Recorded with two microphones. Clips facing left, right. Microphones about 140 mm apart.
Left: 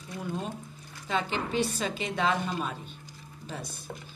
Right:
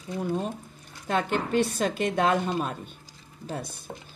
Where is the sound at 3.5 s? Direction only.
50° right (ahead or behind).